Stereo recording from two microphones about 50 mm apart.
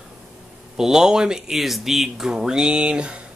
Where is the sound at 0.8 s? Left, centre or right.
Centre.